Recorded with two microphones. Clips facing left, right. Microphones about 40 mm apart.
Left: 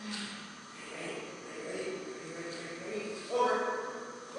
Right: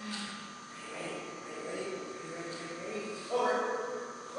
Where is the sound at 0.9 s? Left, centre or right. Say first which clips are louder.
Even; centre.